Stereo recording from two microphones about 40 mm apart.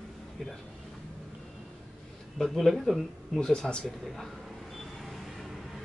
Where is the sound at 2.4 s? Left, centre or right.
Centre.